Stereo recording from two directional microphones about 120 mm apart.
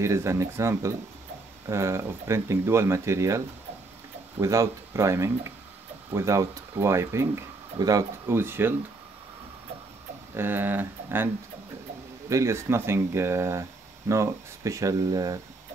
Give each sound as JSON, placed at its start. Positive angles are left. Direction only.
{"t": 0.0, "sound": "speech", "side_deg": -25}
{"t": 10.3, "sound": "speech", "side_deg": -15}
{"t": 12.3, "sound": "speech", "side_deg": -25}